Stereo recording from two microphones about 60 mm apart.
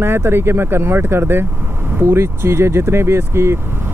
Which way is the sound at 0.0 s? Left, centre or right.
Right.